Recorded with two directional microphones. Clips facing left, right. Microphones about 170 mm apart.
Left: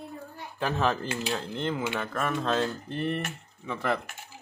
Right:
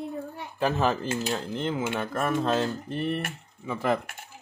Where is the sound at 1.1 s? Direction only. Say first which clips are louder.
Right 3 dB; 45° right (ahead or behind).